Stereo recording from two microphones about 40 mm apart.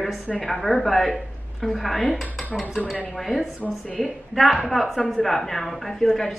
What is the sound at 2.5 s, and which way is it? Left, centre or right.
Dishes, left.